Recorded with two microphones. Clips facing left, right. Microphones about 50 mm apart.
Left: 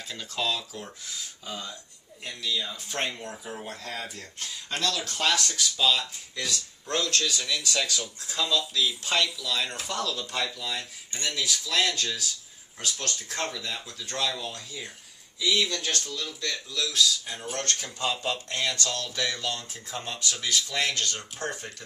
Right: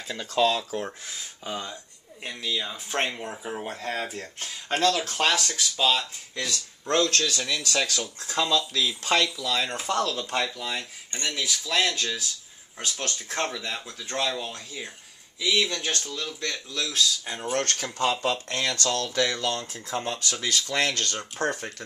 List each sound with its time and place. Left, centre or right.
0.3 s speech: right
6.5 s speech: right
11.2 s speech: centre; by 17.6 s right
17.6 s speech: right